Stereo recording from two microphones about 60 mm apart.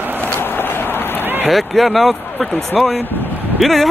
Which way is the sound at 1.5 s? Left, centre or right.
Centre.